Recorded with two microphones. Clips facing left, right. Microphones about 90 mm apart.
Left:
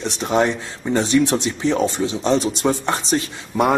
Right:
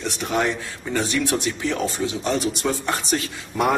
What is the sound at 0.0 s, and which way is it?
Speech, 25° left (ahead or behind).